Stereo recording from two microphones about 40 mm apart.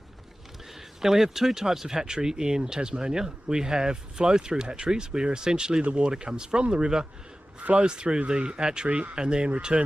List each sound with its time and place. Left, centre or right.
1.0 s speech: centre
8.8 s speech: right
9.1 s speech: right